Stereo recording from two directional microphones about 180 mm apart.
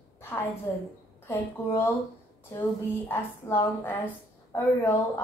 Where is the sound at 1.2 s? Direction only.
15° left (ahead or behind).